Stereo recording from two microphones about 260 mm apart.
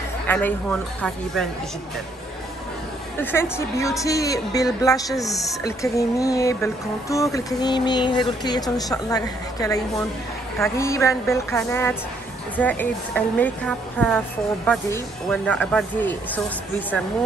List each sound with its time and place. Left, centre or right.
0.3 s a woman's voice: centre
3.2 s a woman's voice: centre